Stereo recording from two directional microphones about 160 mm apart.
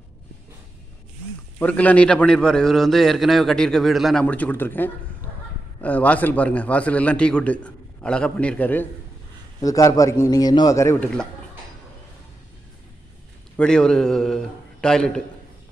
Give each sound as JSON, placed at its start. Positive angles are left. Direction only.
{"t": 1.6, "sound": "a man's voice", "side_deg": 10}
{"t": 9.6, "sound": "a man's voice", "side_deg": 20}
{"t": 13.6, "sound": "a man's voice", "side_deg": 5}